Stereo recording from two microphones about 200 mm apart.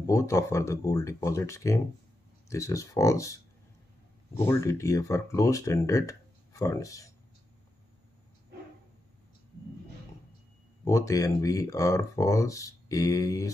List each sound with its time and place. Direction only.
0.0 s speech: 15° left (ahead or behind)
4.4 s speech: 15° left (ahead or behind)
10.8 s speech: 15° left (ahead or behind)